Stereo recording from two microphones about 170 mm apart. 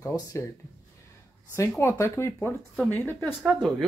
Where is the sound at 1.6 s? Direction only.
15° left (ahead or behind).